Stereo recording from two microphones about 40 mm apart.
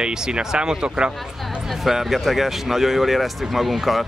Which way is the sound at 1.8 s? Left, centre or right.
Centre.